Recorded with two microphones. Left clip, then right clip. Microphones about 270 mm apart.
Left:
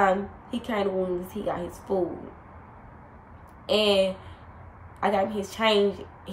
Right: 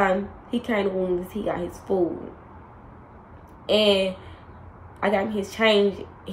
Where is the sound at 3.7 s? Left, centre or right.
Centre.